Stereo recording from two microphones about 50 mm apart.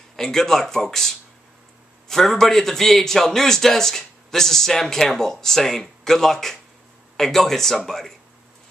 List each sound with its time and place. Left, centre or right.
0.1 s a man's voice: centre